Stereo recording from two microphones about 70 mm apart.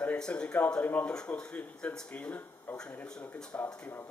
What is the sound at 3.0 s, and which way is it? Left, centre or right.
Speech, centre.